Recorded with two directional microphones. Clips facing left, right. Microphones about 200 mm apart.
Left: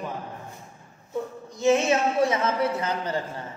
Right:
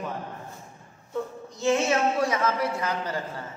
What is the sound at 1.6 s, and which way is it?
A man's voice, 20° left (ahead or behind).